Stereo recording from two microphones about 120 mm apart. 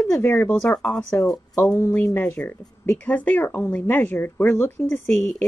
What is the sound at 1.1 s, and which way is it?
Speech, 25° left (ahead or behind).